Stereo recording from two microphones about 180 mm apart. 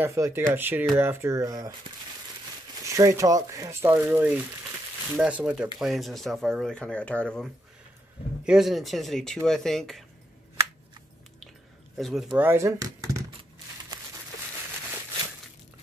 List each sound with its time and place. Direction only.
0.0 s speech: 15° right (ahead or behind)
2.9 s speech: 15° right (ahead or behind); by 7.4 s 5° left (ahead or behind)
8.5 s speech: centre (ahead or behind)
12.0 s speech: centre (ahead or behind); by 13.2 s 15° right (ahead or behind)